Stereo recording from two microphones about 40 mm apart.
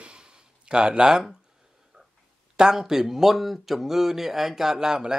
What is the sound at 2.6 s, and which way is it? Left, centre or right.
Speech, centre.